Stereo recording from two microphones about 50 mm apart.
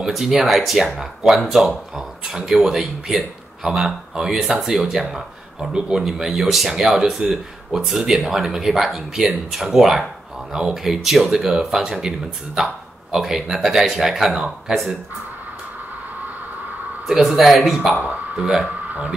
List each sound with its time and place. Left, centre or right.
0.0 s speech: centre
17.1 s speech: centre
17.9 s speech: right